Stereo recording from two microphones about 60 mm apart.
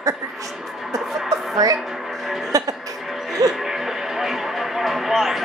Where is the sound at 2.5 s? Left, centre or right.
Right.